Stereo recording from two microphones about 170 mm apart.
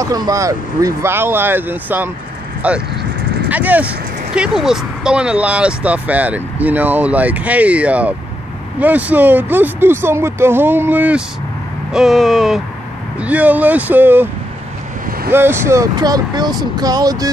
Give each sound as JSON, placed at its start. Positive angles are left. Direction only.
{"t": 0.0, "sound": "speech", "side_deg": -20}
{"t": 15.3, "sound": "speech", "side_deg": -15}